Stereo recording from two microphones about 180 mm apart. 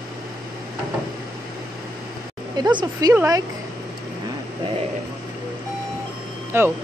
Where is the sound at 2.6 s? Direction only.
25° right (ahead or behind).